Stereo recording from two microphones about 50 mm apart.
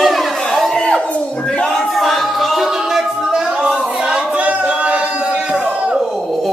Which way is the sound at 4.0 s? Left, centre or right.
Centre.